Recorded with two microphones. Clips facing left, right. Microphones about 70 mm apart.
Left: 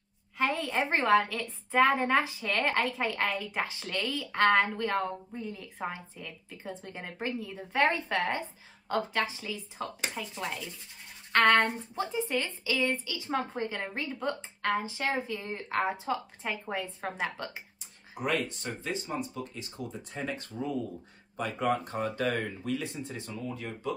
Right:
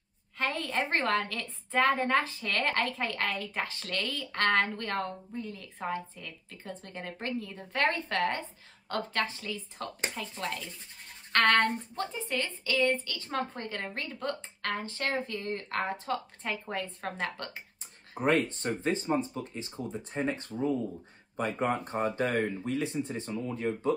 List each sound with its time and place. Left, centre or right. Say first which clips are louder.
0.4 s a woman's voice: left 2 dB; centre
5.3 s a woman's voice: even; centre
18.2 s speech: right 4 dB; right